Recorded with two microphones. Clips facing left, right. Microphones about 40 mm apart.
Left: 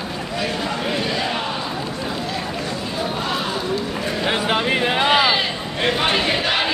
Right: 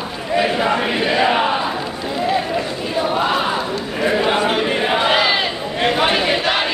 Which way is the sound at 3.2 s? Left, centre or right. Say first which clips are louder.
Right 5 dB; right.